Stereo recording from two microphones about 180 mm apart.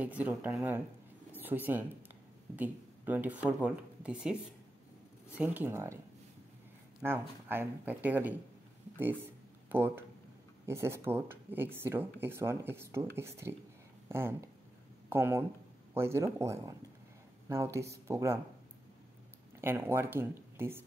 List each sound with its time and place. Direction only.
0.0 s speech: 10° right (ahead or behind)
7.0 s speech: 10° right (ahead or behind)
9.7 s speech: 10° right (ahead or behind)
19.6 s speech: 10° right (ahead or behind)